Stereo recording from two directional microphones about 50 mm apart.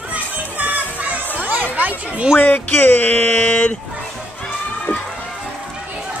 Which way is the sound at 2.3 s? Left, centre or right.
Left.